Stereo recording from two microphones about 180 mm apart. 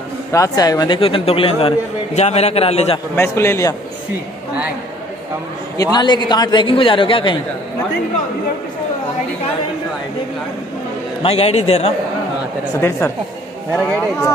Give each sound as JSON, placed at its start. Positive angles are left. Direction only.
{"t": 0.3, "sound": "speech", "side_deg": 20}
{"t": 3.2, "sound": "a man's voice", "side_deg": 15}
{"t": 5.8, "sound": "a man's voice", "side_deg": 25}
{"t": 11.2, "sound": "speech", "side_deg": 35}
{"t": 13.7, "sound": "a man's voice", "side_deg": 10}